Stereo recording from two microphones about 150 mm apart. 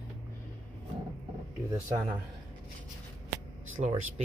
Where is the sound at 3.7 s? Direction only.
55° right (ahead or behind).